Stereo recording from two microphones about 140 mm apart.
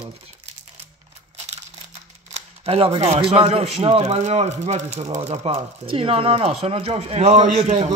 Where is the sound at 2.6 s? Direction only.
45° right (ahead or behind).